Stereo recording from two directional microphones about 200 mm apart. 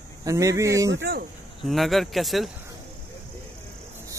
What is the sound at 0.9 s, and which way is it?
Speech, 65° right (ahead or behind).